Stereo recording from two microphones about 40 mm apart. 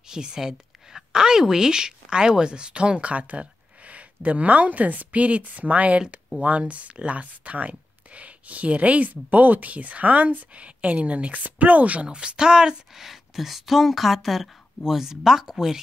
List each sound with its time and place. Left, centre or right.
0.1 s a woman's voice: centre